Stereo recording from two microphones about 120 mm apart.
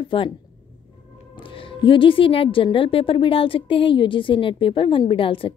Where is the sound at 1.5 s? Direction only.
45° left (ahead or behind).